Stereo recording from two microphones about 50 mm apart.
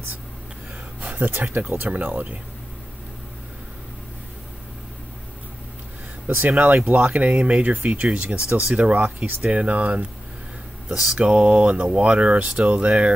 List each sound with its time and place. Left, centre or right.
1.0 s speech: right
6.6 s speech: right
7.0 s speech: right